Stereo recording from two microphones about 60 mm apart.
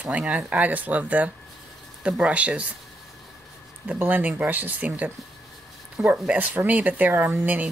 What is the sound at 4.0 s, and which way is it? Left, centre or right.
Speech, right.